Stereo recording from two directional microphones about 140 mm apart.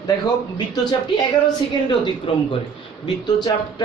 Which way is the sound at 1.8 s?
35° left (ahead or behind).